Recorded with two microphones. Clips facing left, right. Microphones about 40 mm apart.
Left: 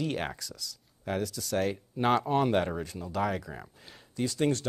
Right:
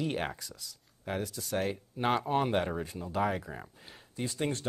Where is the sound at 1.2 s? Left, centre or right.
Centre.